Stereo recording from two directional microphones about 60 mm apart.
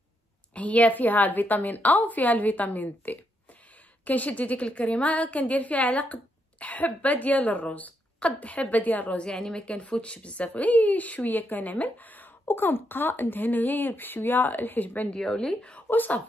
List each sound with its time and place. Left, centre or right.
0.6 s speech: left
15.1 s speech: centre; by 16.2 s left